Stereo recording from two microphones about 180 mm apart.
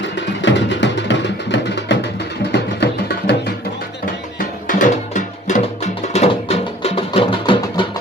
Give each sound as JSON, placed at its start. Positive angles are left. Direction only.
{"t": 0.0, "sound": "music", "side_deg": 80}
{"t": 4.6, "sound": "music", "side_deg": 45}